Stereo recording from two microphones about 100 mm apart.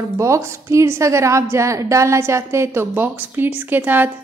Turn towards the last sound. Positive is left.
turn(degrees=-20)  # may be behind; listen again after turning